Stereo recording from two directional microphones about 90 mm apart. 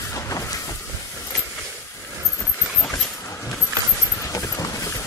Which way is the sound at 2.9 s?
30° left (ahead or behind).